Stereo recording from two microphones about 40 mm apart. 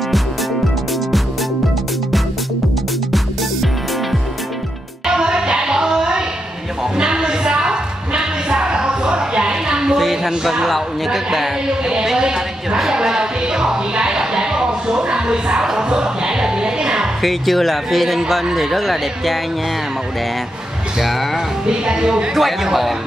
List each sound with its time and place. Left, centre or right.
5.0 s music: centre
7.0 s a sound: centre
9.9 s a sound: centre
11.8 s a woman's voice: centre
12.9 s music: centre
17.2 s speech: centre
21.0 s speech: centre
21.6 s speech: centre
22.3 s speech: centre